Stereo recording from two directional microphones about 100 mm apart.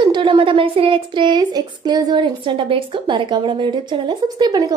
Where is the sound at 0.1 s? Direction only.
60° right (ahead or behind).